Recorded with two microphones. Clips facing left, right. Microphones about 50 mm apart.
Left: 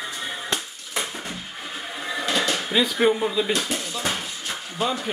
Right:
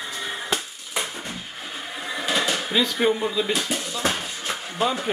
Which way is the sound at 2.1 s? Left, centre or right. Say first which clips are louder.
Even; centre.